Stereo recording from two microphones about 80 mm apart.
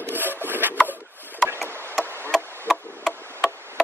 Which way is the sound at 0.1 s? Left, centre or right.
Right.